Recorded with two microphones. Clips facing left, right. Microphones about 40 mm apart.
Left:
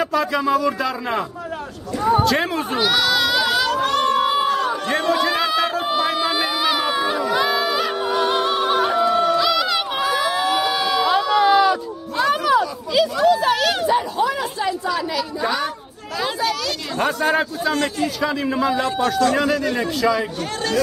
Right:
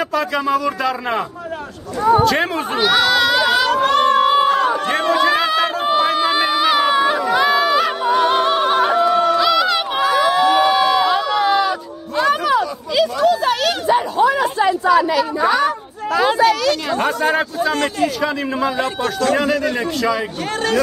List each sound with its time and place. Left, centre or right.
0.0 s speech: centre; by 4.2 s right
4.2 s crowd: centre
4.9 s a sound: centre
8.0 s music: centre
13.9 s a sound: centre
16.2 s speech: right
17.0 s a man's voice: centre